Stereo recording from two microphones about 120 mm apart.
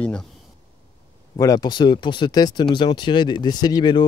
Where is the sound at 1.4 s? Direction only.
30° left (ahead or behind).